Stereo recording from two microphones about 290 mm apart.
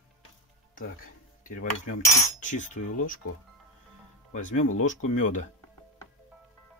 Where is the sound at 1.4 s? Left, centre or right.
Left.